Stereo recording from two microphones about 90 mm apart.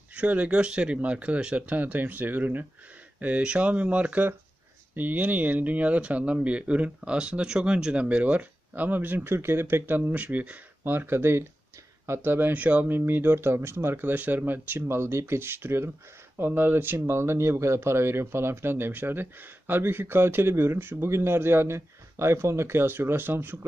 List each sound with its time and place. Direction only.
0.1 s speech: 15° right (ahead or behind)